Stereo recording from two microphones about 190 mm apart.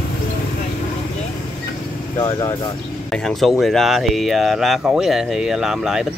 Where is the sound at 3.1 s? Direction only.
Centre (ahead or behind).